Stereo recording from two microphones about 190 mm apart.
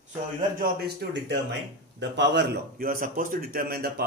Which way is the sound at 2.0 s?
65° right (ahead or behind).